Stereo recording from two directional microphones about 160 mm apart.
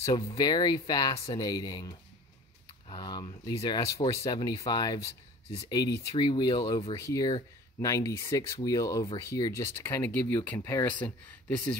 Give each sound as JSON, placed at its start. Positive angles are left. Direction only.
{"t": 0.1, "sound": "speech", "side_deg": 25}